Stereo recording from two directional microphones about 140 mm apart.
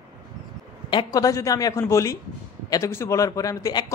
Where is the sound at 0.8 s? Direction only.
30° left (ahead or behind).